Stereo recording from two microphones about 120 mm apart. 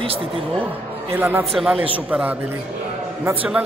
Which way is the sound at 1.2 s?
15° right (ahead or behind).